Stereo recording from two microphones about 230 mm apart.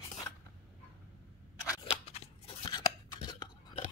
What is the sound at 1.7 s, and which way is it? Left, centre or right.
Scissors, left.